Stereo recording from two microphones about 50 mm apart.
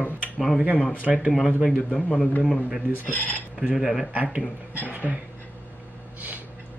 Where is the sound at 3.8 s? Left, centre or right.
Centre.